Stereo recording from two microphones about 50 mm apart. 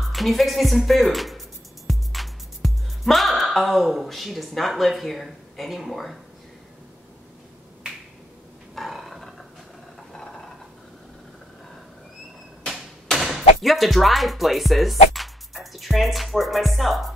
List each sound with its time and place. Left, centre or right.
0.0 s speech: centre
8.7 s roar: centre
10.1 s a sound: centre
13.1 s speech: centre